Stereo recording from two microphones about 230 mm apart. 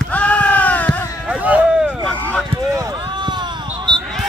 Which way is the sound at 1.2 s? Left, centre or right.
Centre.